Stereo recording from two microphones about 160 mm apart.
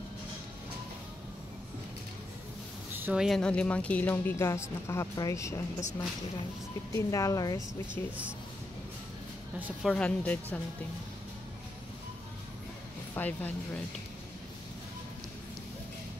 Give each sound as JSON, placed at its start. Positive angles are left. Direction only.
{"t": 2.9, "sound": "a sound", "side_deg": -10}
{"t": 3.3, "sound": "speech", "side_deg": 5}
{"t": 6.9, "sound": "speech", "side_deg": 20}
{"t": 9.8, "sound": "speech", "side_deg": 5}
{"t": 13.1, "sound": "speech", "side_deg": 10}